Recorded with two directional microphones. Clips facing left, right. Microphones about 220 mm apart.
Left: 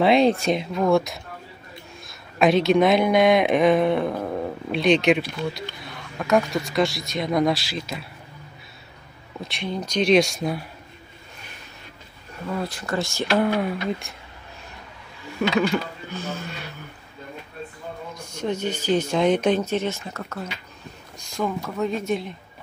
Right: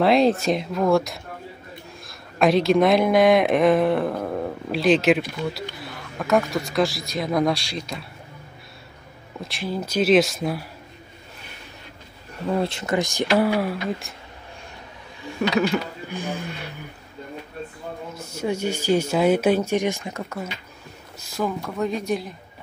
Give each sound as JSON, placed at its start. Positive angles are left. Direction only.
{"t": 0.0, "sound": "a woman's voice", "side_deg": 0}
{"t": 9.4, "sound": "a woman's voice", "side_deg": 0}
{"t": 12.4, "sound": "speech", "side_deg": -25}
{"t": 16.1, "sound": "speech", "side_deg": -15}
{"t": 18.1, "sound": "speech", "side_deg": -5}
{"t": 21.2, "sound": "a woman's voice", "side_deg": -5}